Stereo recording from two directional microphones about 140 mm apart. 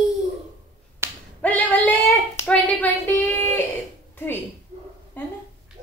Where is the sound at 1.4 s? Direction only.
10° left (ahead or behind).